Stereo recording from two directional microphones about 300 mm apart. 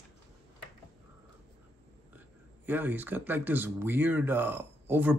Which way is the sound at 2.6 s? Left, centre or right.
Centre.